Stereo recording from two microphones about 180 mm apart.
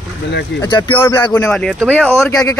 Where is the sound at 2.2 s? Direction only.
20° left (ahead or behind).